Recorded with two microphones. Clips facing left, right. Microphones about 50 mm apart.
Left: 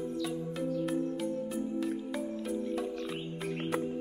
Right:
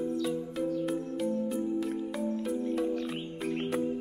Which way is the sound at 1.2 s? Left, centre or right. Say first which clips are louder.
Right 3 dB; centre.